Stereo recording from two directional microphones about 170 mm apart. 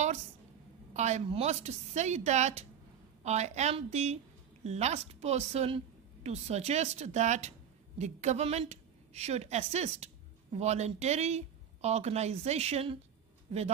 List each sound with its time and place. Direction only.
0.9 s a woman's voice: 45° right (ahead or behind)